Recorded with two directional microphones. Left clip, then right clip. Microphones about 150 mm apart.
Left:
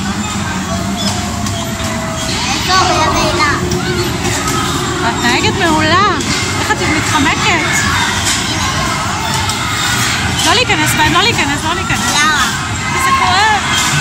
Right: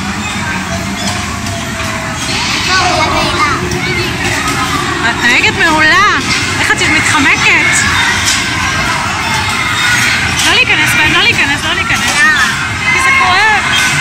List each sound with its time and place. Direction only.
5.2 s vehicle: 15° left (ahead or behind)
5.8 s speech: 10° left (ahead or behind)
10.5 s speech: 25° left (ahead or behind)